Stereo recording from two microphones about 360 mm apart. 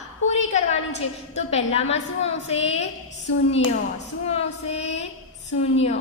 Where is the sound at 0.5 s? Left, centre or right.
Centre.